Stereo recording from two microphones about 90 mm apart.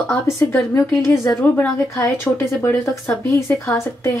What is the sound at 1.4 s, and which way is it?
A woman's voice, 15° left (ahead or behind).